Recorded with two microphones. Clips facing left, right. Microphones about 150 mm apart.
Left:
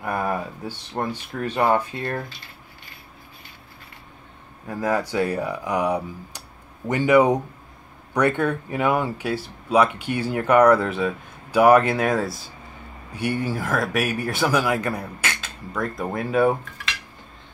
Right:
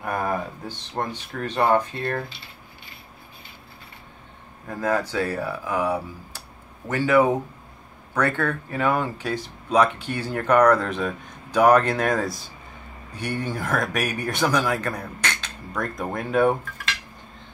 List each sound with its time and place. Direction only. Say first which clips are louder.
0.7 s speech: left 3 dB; 10° left (ahead or behind)
4.6 s speech: left 1 dB; 10° left (ahead or behind)